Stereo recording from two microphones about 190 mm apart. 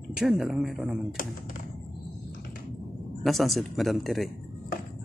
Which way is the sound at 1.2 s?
45° left (ahead or behind).